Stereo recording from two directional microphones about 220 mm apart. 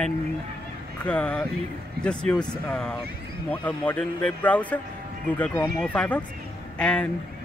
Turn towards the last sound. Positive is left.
turn(degrees=5)  # may be behind; listen again after turning